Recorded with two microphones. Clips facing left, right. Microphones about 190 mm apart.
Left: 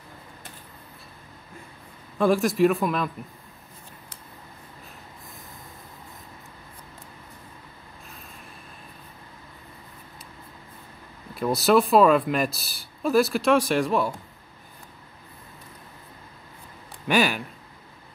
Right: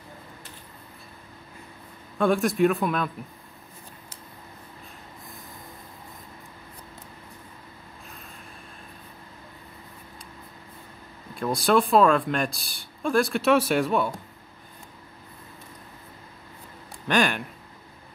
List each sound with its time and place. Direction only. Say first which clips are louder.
2.1 s speech: left 1 dB; centre (ahead or behind)
11.3 s speech: left 2 dB; 5° left (ahead or behind)
17.1 s speech: left 1 dB; 5° left (ahead or behind)